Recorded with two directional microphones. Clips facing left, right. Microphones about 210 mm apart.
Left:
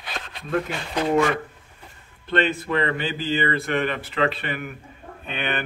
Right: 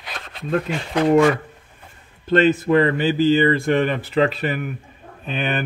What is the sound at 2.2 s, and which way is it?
Speech, 40° right (ahead or behind).